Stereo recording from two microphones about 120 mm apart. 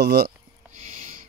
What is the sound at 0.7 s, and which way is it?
Owl, 80° right.